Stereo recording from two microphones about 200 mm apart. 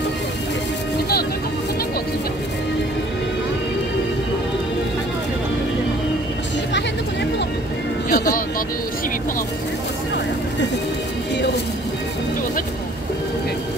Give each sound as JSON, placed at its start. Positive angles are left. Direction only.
{"t": 8.1, "sound": "vehicle", "side_deg": 40}